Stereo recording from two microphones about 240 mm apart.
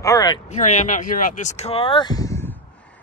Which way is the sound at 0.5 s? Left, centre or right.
Left.